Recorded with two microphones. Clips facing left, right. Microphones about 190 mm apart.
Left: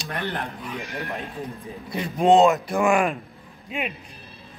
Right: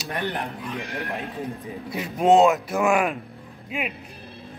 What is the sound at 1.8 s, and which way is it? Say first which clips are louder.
Speech: even; 5° right (ahead or behind).